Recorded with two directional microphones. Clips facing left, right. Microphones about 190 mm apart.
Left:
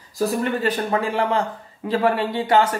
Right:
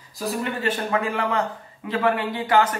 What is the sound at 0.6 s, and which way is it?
Speech, 35° left (ahead or behind).